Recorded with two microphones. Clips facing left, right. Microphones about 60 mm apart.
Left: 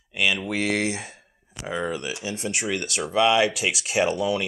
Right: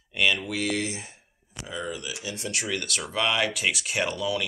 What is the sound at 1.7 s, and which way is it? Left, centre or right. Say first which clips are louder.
Speech: left 6 dB; left.